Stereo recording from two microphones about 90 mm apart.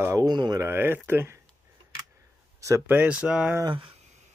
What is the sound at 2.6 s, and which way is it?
Speech, 35° right (ahead or behind).